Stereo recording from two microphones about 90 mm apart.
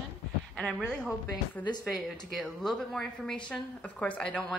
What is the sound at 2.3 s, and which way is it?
A woman's voice, 5° left (ahead or behind).